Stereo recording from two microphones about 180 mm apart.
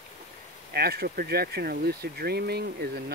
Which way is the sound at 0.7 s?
60° right (ahead or behind).